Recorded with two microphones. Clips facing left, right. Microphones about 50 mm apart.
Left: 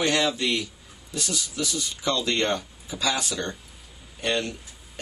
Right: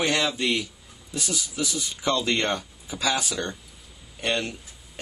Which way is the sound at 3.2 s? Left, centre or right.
Centre.